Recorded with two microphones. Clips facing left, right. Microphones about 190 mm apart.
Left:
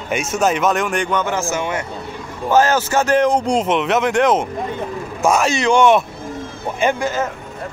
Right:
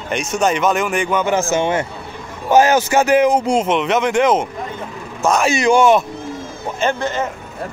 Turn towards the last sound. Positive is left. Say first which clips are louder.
# left 1 dB
turn(degrees=10)  # may be behind; listen again after turning